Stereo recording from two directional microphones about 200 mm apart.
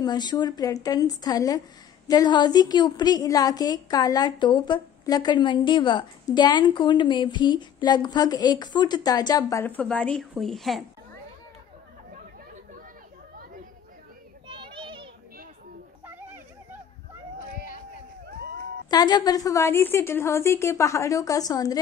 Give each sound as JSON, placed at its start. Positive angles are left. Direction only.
{"t": 0.0, "sound": "a woman's voice", "side_deg": 20}
{"t": 14.5, "sound": "children playing", "side_deg": -25}
{"t": 18.9, "sound": "a woman's voice", "side_deg": 20}